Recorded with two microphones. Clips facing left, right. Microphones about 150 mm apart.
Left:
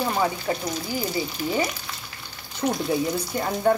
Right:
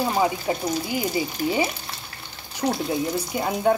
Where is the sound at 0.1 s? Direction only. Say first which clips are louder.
Right 2 dB; 15° right (ahead or behind).